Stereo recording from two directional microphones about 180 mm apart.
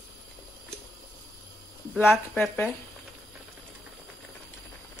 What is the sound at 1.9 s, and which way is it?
Speech, centre (ahead or behind).